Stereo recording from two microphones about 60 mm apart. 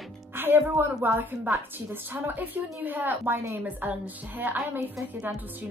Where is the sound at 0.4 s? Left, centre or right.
Right.